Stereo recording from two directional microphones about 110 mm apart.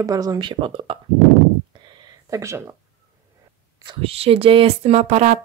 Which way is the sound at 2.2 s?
30° right (ahead or behind).